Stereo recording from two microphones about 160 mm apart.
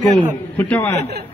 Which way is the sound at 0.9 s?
90° right.